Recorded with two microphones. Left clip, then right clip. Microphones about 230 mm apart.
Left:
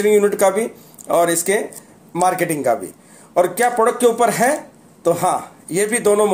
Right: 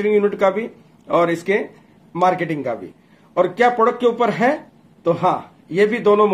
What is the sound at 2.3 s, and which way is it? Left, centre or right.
Speech, left.